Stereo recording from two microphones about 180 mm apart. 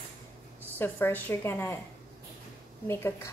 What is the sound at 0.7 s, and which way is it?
A woman's voice, 10° left (ahead or behind).